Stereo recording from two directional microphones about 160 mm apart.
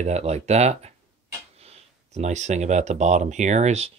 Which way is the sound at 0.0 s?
45° right (ahead or behind).